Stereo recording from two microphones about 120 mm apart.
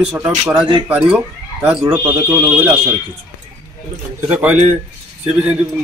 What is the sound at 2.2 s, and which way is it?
Speech, 20° right (ahead or behind).